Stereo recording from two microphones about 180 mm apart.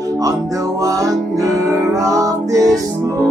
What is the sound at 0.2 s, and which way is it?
Music, 20° right (ahead or behind).